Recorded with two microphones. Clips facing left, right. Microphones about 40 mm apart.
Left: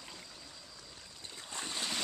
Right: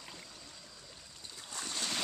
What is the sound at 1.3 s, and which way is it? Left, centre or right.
Boat, left.